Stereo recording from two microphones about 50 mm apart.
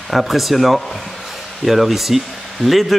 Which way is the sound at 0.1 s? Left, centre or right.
Centre.